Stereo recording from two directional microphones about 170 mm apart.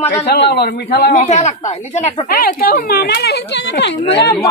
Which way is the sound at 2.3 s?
60° left (ahead or behind).